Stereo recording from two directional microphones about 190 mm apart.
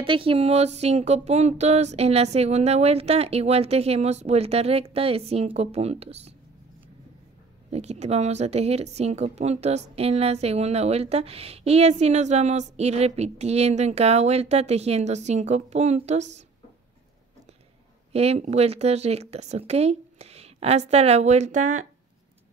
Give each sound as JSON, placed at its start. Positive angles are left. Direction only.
{"t": 0.0, "sound": "speech", "side_deg": -30}
{"t": 7.7, "sound": "speech", "side_deg": -35}
{"t": 18.1, "sound": "speech", "side_deg": -35}